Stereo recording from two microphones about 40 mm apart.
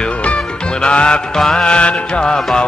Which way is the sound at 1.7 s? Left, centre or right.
Left.